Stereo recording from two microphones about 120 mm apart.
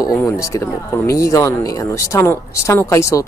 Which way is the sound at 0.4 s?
25° left (ahead or behind).